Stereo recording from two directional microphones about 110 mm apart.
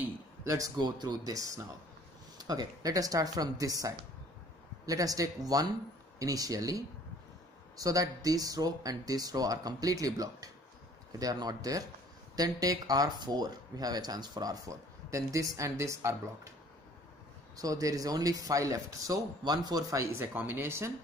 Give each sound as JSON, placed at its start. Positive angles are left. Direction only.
{"t": 0.4, "sound": "speech", "side_deg": -25}
{"t": 0.7, "sound": "speech", "side_deg": -40}
{"t": 17.6, "sound": "speech", "side_deg": -35}